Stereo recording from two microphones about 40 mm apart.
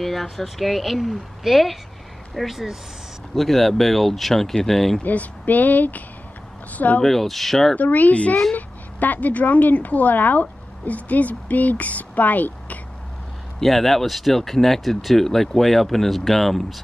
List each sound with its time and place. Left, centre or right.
0.0 s speech: centre
3.3 s speech: centre
5.0 s a woman's voice: left
7.0 s speech: centre
7.7 s a woman's voice: left
13.6 s speech: centre